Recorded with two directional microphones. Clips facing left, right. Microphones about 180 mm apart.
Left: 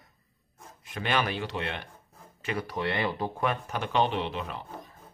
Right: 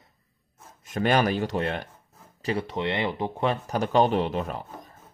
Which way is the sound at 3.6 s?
40° right (ahead or behind).